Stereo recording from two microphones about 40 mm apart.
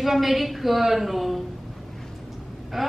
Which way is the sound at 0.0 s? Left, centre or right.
Centre.